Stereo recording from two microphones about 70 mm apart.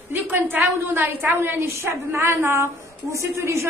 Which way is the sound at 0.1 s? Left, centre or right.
Right.